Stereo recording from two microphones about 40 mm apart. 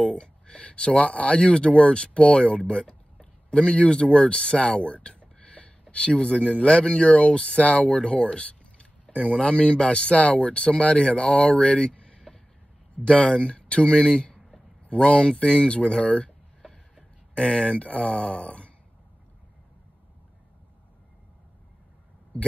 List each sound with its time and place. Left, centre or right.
0.0 s speech: left
2.8 s a sound: centre
3.5 s speech: left
17.3 s speech: left